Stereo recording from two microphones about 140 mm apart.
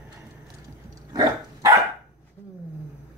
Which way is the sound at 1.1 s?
25° right (ahead or behind).